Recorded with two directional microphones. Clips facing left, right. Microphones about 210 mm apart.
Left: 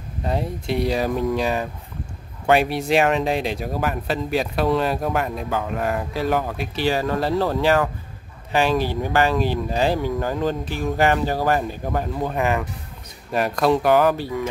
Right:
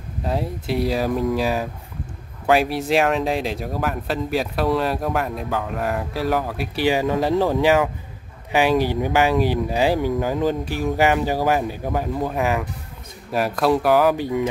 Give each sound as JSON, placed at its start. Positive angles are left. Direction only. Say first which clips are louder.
{"t": 0.2, "sound": "speech", "louder": "even", "side_deg": 0}
{"t": 14.1, "sound": "speech", "louder": "right 4 dB", "side_deg": -15}